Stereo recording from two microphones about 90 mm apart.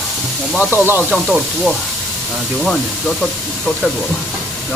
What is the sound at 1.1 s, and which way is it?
Speech, centre (ahead or behind).